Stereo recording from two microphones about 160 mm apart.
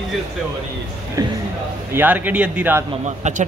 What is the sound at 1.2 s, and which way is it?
Speech, 25° right (ahead or behind).